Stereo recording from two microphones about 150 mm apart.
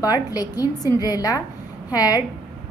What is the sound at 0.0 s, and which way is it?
A woman's voice, 25° left (ahead or behind).